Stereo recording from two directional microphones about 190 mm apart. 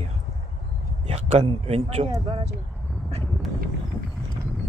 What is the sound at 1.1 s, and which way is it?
Speech, 35° right (ahead or behind).